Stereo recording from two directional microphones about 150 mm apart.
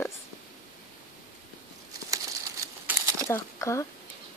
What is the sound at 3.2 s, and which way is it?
Speech, 20° left (ahead or behind).